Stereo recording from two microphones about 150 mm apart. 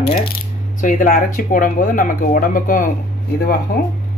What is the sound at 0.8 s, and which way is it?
Speech, 65° left (ahead or behind).